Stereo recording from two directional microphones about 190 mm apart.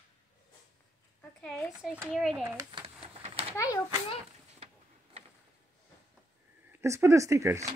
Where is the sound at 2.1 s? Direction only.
Centre (ahead or behind).